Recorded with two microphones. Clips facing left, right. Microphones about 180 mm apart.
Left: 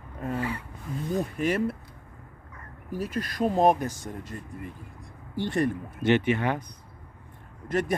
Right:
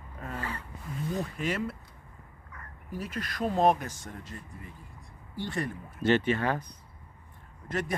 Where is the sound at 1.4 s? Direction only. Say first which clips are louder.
Left 8 dB; 45° left (ahead or behind).